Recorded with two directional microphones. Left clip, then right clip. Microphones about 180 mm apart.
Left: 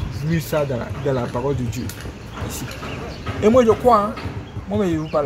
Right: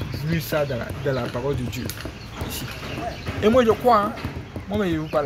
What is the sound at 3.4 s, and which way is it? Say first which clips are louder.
Speech: left 3 dB; 5° left (ahead or behind).